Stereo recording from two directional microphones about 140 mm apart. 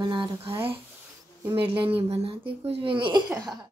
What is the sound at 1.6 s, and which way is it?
Speech, 40° right (ahead or behind).